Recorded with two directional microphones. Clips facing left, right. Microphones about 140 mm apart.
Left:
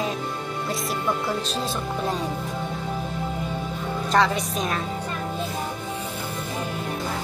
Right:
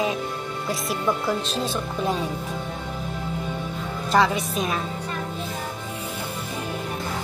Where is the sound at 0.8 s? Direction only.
Centre (ahead or behind).